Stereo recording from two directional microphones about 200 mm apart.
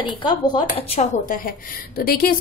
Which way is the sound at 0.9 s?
40° left (ahead or behind).